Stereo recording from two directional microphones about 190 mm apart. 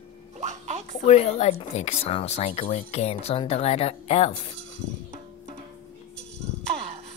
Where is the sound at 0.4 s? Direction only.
40° right (ahead or behind).